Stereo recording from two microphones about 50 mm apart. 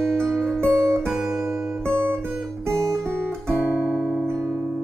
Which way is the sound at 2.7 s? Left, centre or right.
Centre.